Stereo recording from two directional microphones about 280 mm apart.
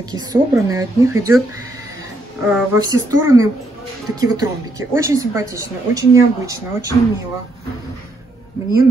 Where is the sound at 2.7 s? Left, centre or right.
Centre.